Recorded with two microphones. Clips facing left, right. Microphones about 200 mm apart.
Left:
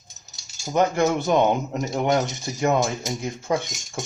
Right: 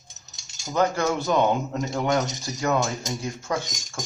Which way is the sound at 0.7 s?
20° left (ahead or behind).